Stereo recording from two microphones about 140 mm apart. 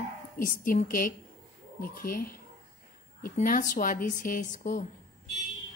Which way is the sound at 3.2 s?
75° left (ahead or behind).